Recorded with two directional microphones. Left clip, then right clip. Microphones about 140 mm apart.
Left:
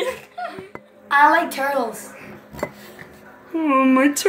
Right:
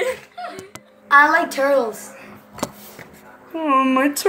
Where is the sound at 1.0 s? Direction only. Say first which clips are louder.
Right 1 dB; 80° right.